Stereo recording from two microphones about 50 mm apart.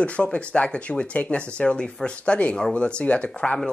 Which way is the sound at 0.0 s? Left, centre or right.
Left.